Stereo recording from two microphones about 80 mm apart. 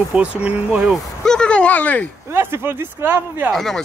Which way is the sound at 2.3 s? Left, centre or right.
Right.